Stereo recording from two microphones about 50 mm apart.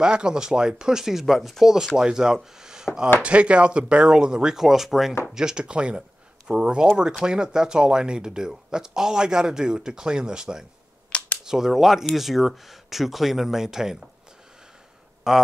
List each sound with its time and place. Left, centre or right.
0.0 s speech: centre
3.2 s speech: right
11.1 s camera: left
11.4 s speech: centre
15.3 s speech: centre